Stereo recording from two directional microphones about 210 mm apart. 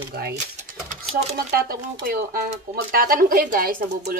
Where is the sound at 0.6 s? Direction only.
40° right (ahead or behind).